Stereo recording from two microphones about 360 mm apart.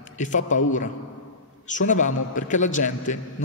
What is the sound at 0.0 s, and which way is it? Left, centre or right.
A man's voice, left.